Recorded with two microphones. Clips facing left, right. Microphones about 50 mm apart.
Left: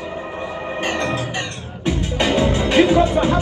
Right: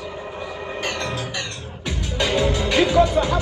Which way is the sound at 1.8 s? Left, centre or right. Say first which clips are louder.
Left 5 dB; left.